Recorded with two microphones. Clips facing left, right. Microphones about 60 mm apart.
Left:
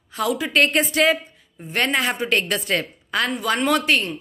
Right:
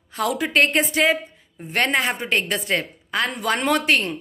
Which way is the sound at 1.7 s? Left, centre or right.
Right.